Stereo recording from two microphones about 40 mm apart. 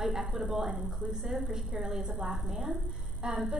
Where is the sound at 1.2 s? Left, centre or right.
Centre.